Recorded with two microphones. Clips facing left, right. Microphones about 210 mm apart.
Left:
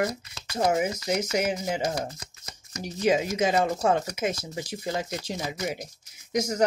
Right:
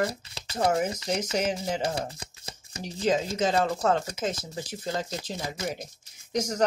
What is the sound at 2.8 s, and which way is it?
Speech, 10° left (ahead or behind).